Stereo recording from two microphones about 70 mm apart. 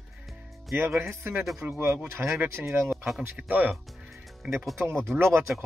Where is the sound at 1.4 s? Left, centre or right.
Centre.